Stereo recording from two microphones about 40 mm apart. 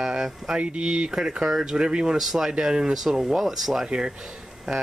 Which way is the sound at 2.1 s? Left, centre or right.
Centre.